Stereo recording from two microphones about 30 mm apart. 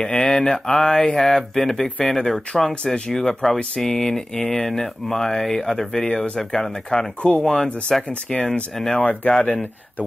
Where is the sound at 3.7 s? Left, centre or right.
Centre.